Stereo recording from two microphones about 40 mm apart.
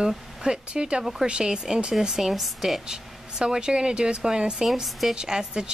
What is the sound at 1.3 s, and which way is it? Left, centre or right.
Speech, right.